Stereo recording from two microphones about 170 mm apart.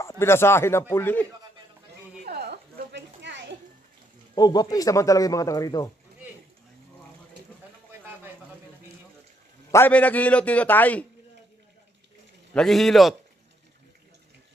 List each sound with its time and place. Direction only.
0.0 s a man's voice: 15° left (ahead or behind)
2.2 s a sound: 70° right (ahead or behind); by 3.5 s 90° right
4.4 s speech: 25° left (ahead or behind)
9.7 s a man's voice: 10° left (ahead or behind)
12.5 s a man's voice: centre (ahead or behind)